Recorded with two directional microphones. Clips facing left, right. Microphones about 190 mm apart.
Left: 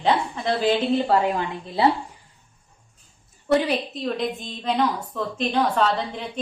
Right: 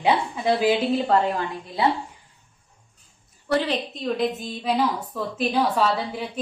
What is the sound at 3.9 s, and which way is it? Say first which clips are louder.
A woman's voice: right 2 dB; centre (ahead or behind).